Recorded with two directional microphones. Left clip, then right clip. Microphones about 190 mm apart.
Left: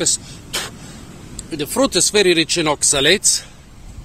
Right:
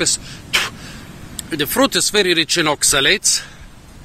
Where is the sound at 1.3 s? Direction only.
5° left (ahead or behind); by 3.4 s 20° left (ahead or behind).